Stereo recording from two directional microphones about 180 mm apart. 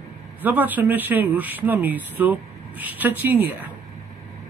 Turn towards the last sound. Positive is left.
turn(degrees=-10)  # may be behind; listen again after turning